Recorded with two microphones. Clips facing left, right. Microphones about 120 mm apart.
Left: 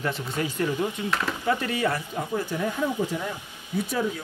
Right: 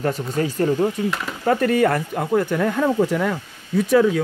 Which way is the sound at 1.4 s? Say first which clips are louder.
Right 10 dB; 50° right (ahead or behind).